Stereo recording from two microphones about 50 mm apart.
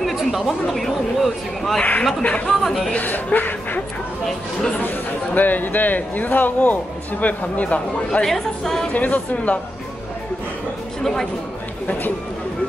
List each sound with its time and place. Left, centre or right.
0.0 s speech: centre
1.8 s speech: left
2.6 s speech: centre
2.9 s speech: left
4.8 s speech: left
8.2 s a woman's voice: centre
8.9 s speech: left